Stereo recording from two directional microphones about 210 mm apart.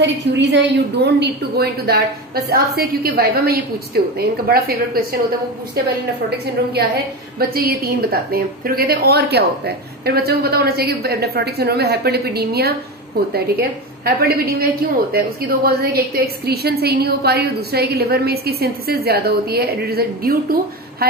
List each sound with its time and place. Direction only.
0.0 s a woman's voice: 55° right (ahead or behind)
7.3 s a woman's voice: 45° right (ahead or behind)